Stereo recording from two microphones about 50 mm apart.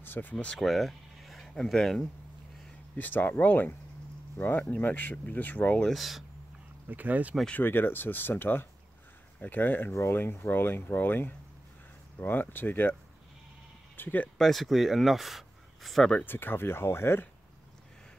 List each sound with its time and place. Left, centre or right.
0.0 s speech: left
0.6 s speech: centre
3.0 s speech: left
5.9 s speech: centre
6.9 s speech: right
7.5 s speech: left
13.9 s speech: left
14.4 s speech: centre
16.3 s speech: left